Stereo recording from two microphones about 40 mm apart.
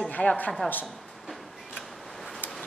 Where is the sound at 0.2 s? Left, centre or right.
Left.